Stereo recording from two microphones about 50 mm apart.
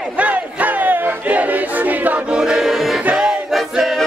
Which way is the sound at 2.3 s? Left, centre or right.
Centre.